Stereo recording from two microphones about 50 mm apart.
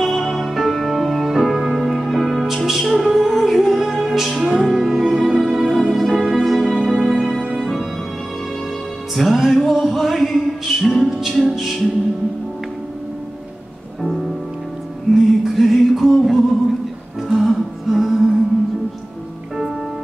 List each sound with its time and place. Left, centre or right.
0.0 s music: centre
9.1 s music: centre
15.1 s music: centre